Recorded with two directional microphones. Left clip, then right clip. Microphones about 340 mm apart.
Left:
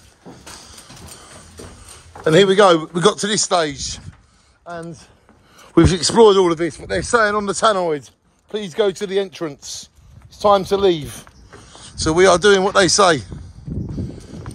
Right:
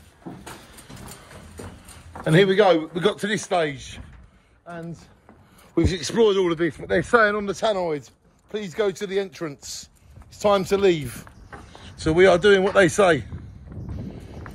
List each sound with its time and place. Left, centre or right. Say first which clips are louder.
2.5 s a man's voice: left 5 dB; centre
5.6 s a man's voice: left 9 dB; left